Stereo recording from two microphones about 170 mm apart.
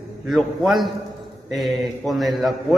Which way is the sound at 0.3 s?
Centre (ahead or behind).